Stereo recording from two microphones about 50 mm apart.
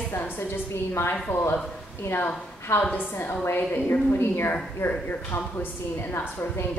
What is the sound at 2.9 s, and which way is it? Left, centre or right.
A woman's voice, left.